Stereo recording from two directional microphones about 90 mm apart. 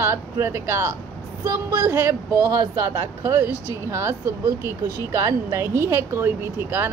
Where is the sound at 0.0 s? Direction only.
30° right (ahead or behind).